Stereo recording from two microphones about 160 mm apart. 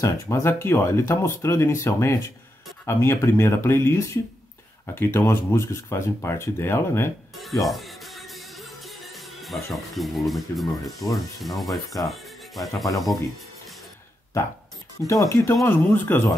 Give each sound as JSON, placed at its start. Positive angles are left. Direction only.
{"t": 0.0, "sound": "speech", "side_deg": 15}
{"t": 7.6, "sound": "speech", "side_deg": 0}
{"t": 9.4, "sound": "speech", "side_deg": 0}
{"t": 15.0, "sound": "speech", "side_deg": 20}